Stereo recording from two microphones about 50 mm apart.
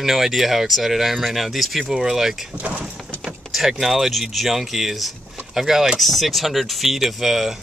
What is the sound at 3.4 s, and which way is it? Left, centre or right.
Speech, centre.